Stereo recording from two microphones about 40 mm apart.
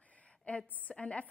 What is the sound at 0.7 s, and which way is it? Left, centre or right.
Speech, left.